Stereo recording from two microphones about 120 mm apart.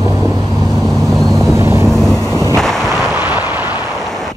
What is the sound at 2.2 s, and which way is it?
Artillery fire, 30° left (ahead or behind).